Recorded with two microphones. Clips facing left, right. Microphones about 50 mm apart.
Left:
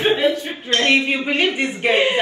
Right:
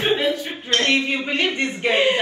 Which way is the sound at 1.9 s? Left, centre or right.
Left.